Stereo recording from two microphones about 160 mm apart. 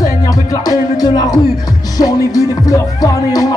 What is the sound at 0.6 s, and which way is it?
Music, 25° left (ahead or behind).